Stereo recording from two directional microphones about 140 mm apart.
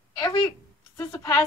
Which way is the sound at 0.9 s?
20° left (ahead or behind).